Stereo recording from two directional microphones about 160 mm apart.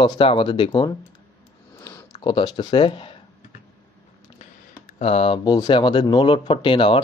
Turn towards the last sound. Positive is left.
turn(degrees=30)  # may be behind; listen again after turning